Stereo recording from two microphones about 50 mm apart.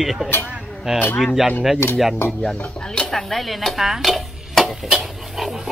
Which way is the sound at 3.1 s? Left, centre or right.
Centre.